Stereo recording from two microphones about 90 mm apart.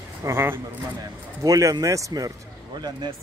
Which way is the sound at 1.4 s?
40° right (ahead or behind).